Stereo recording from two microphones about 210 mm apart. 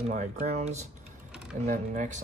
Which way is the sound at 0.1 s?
35° right (ahead or behind).